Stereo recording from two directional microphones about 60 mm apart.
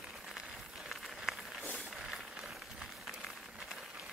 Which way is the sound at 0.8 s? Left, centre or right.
Centre.